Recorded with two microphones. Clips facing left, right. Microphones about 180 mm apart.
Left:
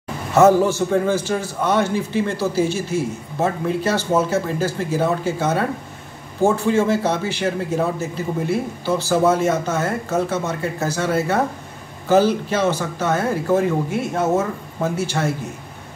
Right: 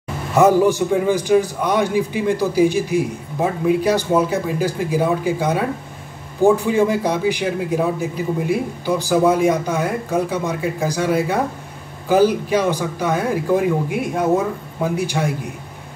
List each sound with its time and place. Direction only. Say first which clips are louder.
0.3 s a man's voice: even; 15° right (ahead or behind)